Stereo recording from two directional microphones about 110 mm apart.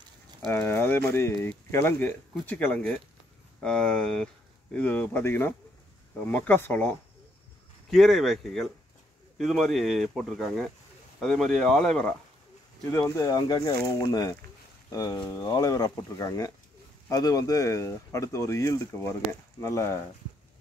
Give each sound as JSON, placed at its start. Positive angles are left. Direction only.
{"t": 0.0, "sound": "a sound", "side_deg": -40}
{"t": 0.5, "sound": "speech", "side_deg": 20}
{"t": 7.9, "sound": "speech", "side_deg": 0}
{"t": 12.9, "sound": "speech", "side_deg": 30}